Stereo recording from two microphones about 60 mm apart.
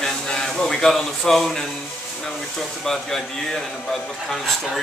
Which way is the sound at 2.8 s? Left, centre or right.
Centre.